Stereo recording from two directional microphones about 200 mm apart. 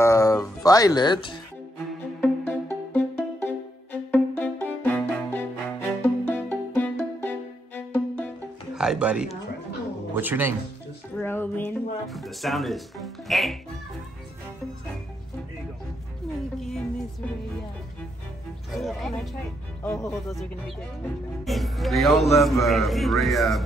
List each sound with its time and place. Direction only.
0.0 s music: 15° left (ahead or behind)
2.2 s music: 10° left (ahead or behind)
8.7 s speech: 5° right (ahead or behind)
11.1 s music: 10° left (ahead or behind)
12.1 s speech: centre (ahead or behind)
16.5 s music: centre (ahead or behind)
18.7 s music: centre (ahead or behind)
19.8 s speech: 10° left (ahead or behind)
20.2 s a man's voice: centre (ahead or behind)